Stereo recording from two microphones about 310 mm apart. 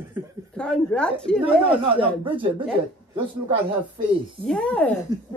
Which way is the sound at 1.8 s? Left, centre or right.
Centre.